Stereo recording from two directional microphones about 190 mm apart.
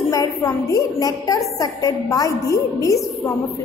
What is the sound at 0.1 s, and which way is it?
A woman's voice, 20° left (ahead or behind).